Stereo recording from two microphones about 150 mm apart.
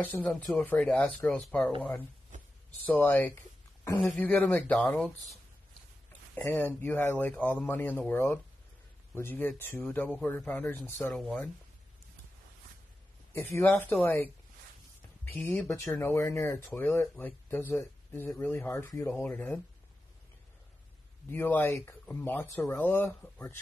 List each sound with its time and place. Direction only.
0.0 s speech: 10° left (ahead or behind)
1.8 s speech: 10° left (ahead or behind)
2.3 s a sound: 55° right (ahead or behind)
2.8 s speech: 10° left (ahead or behind)
6.3 s speech: 15° left (ahead or behind)
13.3 s speech: 15° left (ahead or behind)
15.3 s speech: 10° left (ahead or behind)
21.3 s speech: 15° left (ahead or behind)